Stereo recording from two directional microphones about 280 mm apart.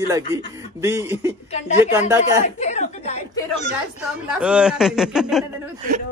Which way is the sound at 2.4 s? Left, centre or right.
Left.